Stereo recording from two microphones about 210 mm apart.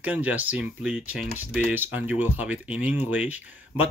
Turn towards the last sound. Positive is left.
turn(degrees=-5)  # may be behind; listen again after turning